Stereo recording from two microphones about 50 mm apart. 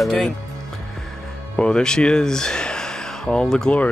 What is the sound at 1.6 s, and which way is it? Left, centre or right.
Speech, centre.